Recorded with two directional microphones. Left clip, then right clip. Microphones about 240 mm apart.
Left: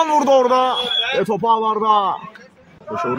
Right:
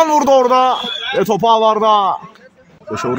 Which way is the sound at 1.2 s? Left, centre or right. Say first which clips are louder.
Right 8 dB; right.